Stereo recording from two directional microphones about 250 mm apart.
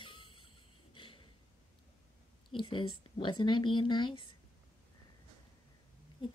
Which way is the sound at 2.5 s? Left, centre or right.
Left.